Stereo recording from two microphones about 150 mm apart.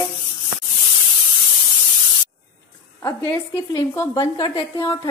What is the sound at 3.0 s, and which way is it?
A woman's voice, 20° left (ahead or behind).